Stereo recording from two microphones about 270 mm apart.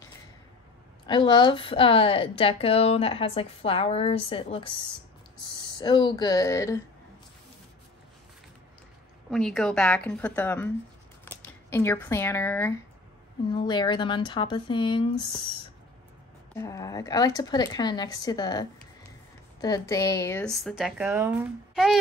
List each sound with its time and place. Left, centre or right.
1.0 s a woman's voice: centre
9.3 s a woman's voice: centre
16.5 s a woman's voice: centre